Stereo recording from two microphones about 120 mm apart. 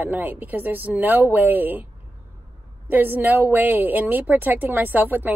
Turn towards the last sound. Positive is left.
turn(degrees=-15)  # may be behind; listen again after turning